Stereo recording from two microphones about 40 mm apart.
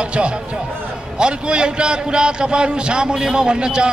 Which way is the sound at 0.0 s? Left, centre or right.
Right.